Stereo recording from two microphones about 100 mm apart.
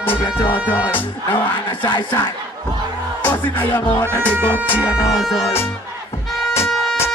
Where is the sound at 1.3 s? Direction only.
55° left (ahead or behind).